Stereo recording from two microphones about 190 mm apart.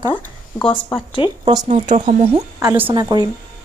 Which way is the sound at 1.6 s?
35° right (ahead or behind).